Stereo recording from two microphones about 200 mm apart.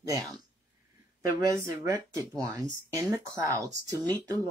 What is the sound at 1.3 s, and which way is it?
Speech, 15° right (ahead or behind).